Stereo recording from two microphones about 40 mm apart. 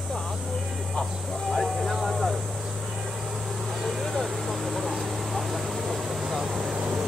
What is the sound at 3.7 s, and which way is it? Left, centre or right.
Vehicle, centre.